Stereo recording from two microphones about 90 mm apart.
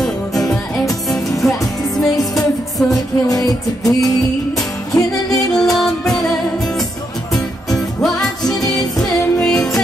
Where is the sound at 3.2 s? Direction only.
40° left (ahead or behind).